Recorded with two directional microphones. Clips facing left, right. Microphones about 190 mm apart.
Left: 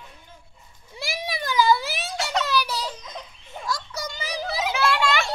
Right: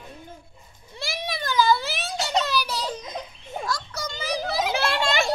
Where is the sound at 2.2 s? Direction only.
25° right (ahead or behind).